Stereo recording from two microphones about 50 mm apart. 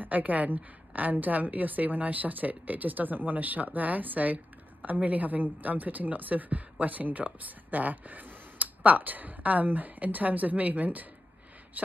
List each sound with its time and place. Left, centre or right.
0.0 s a woman's voice: right